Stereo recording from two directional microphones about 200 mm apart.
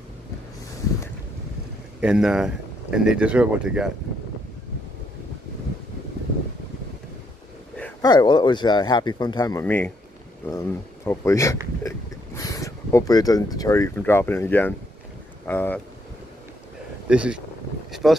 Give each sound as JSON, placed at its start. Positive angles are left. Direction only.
{"t": 2.0, "sound": "speech", "side_deg": -5}
{"t": 8.0, "sound": "speech", "side_deg": 20}
{"t": 17.1, "sound": "speech", "side_deg": -5}